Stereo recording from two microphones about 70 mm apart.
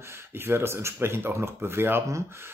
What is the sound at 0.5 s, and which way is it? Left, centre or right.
Speech, right.